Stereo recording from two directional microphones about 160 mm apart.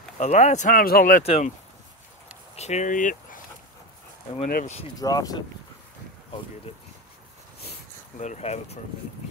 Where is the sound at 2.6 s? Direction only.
45° left (ahead or behind).